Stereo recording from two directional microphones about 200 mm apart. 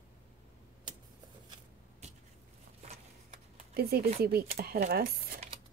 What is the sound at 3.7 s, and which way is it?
Speech, 50° right (ahead or behind).